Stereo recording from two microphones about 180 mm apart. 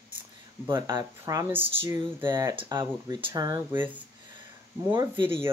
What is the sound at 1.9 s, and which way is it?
Speech, 25° right (ahead or behind).